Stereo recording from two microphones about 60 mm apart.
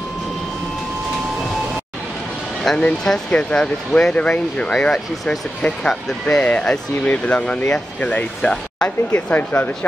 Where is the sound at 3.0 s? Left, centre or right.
Centre.